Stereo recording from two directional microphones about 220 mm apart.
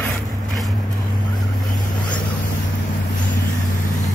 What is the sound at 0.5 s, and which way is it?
Vehicle, centre (ahead or behind).